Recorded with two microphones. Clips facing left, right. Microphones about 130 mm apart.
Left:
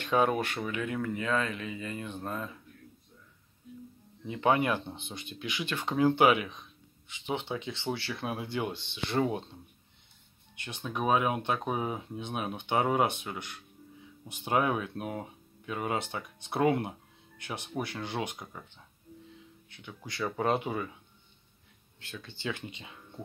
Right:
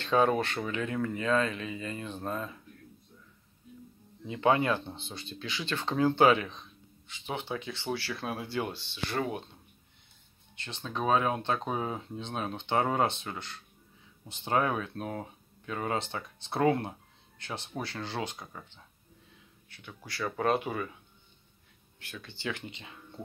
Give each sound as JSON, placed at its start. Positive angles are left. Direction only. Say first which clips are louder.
{"t": 0.0, "sound": "speech", "louder": "right 1 dB", "side_deg": 15}
{"t": 1.2, "sound": "speech", "louder": "right 5 dB", "side_deg": -20}
{"t": 4.3, "sound": "speech", "louder": "right 1 dB", "side_deg": 20}
{"t": 10.5, "sound": "speech", "louder": "left 1 dB", "side_deg": 15}
{"t": 19.7, "sound": "speech", "louder": "left 1 dB", "side_deg": 15}
{"t": 22.2, "sound": "speech", "louder": "even", "side_deg": 15}